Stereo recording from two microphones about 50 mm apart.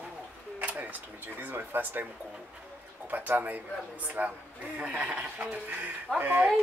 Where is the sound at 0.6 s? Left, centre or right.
Right.